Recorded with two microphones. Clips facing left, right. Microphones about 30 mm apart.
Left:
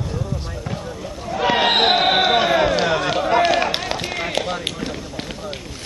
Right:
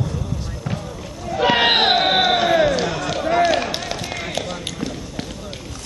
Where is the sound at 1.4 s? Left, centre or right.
Centre.